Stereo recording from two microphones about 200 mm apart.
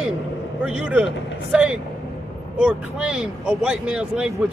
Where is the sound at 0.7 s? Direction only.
5° right (ahead or behind).